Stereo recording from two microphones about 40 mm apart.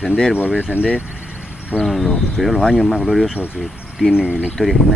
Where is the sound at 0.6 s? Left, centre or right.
Right.